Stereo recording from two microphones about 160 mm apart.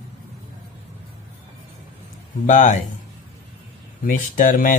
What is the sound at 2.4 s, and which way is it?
Speech, 50° left (ahead or behind).